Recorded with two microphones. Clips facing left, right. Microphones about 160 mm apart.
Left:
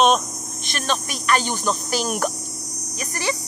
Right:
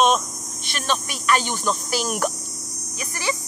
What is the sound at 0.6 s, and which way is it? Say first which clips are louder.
Speech: even; 45° left (ahead or behind).